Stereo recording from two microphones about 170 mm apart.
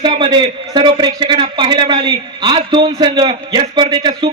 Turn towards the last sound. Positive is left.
turn(degrees=-25)  # may be behind; listen again after turning